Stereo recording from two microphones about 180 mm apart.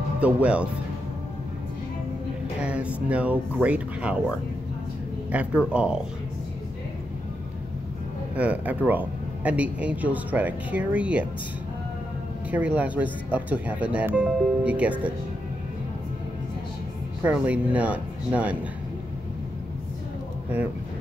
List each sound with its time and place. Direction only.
0.2 s speech: 5° right (ahead or behind)
2.6 s speech: 5° right (ahead or behind)
5.7 s speech: 5° right (ahead or behind)
8.4 s speech: 10° right (ahead or behind)
12.4 s speech: 10° right (ahead or behind)
17.3 s speech: 10° right (ahead or behind)